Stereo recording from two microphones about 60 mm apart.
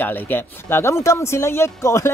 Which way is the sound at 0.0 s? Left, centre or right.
Left.